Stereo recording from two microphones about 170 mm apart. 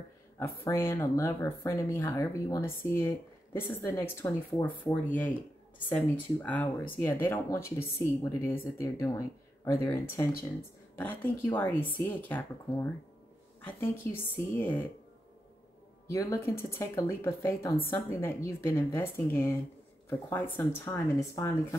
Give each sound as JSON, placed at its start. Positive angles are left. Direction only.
{"t": 0.4, "sound": "speech", "side_deg": 15}
{"t": 16.1, "sound": "speech", "side_deg": 15}